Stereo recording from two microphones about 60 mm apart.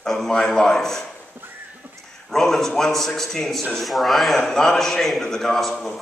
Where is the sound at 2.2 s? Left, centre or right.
Centre.